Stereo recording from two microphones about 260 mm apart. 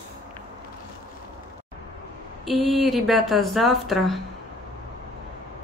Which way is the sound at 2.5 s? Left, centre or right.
Centre.